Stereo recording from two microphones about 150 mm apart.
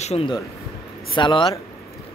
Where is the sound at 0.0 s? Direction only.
45° left (ahead or behind).